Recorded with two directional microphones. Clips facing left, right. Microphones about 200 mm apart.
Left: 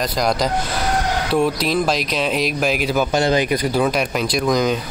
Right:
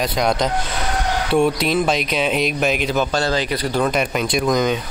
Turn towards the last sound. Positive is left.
turn(degrees=0)  # may be behind; listen again after turning